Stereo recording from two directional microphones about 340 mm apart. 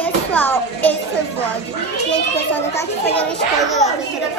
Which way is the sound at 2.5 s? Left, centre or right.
Centre.